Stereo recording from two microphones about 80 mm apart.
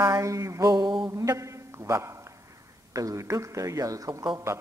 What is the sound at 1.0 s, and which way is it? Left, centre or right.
A man's voice, right.